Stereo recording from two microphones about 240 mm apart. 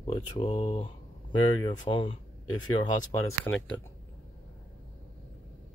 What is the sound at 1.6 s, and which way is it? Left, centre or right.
Speech, centre.